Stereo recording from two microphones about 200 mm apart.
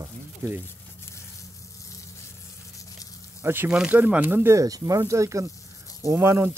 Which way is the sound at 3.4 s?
10° right (ahead or behind).